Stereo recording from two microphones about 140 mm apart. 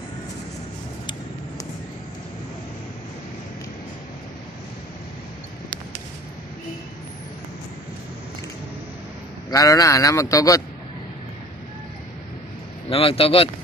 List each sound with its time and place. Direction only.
9.5 s speech: 25° left (ahead or behind)
12.9 s a man's voice: 45° left (ahead or behind)